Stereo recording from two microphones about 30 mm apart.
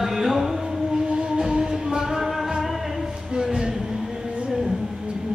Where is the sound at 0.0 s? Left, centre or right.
Centre.